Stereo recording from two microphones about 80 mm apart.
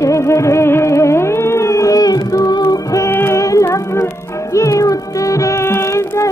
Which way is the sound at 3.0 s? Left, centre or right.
Left.